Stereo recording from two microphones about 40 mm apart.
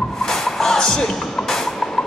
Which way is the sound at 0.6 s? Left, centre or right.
Centre.